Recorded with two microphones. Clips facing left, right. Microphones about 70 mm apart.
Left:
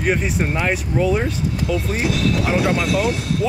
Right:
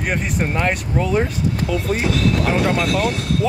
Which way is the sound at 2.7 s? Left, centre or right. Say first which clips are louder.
Even; right.